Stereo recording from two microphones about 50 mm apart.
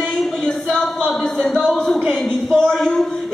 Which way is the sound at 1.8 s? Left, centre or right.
Centre.